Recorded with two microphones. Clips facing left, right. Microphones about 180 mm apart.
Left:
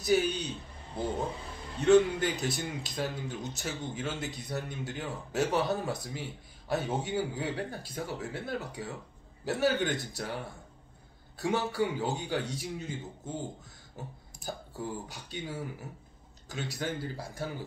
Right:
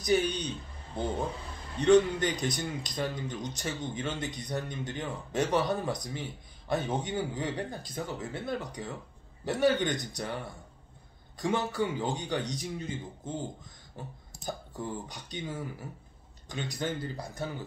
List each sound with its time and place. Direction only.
0.0 s a man's voice: 5° left (ahead or behind)
1.8 s speech: 5° left (ahead or behind)
11.3 s speech: 10° left (ahead or behind)
13.9 s speech: 10° left (ahead or behind)